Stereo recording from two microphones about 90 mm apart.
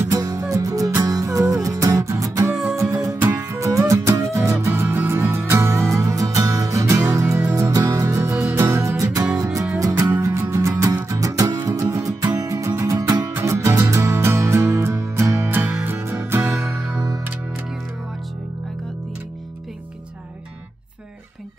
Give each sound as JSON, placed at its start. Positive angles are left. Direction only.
{"t": 0.1, "sound": "music", "side_deg": -45}
{"t": 13.3, "sound": "music", "side_deg": -30}